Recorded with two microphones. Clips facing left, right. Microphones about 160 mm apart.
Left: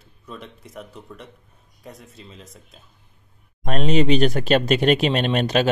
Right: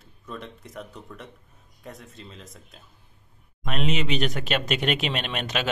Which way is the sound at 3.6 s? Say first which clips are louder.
Left 8 dB; 35° left (ahead or behind).